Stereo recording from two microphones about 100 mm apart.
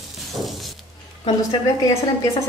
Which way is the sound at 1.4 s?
35° left (ahead or behind).